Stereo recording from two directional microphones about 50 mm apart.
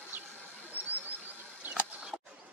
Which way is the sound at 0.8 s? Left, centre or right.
Right.